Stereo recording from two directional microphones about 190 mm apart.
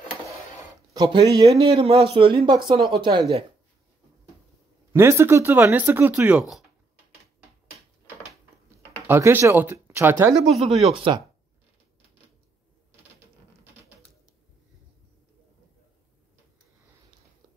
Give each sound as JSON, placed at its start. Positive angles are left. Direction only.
{"t": 0.9, "sound": "speech", "side_deg": -20}
{"t": 4.9, "sound": "speech", "side_deg": -15}
{"t": 9.0, "sound": "speech", "side_deg": -10}